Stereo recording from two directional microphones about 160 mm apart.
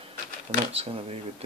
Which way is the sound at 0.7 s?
35° right (ahead or behind).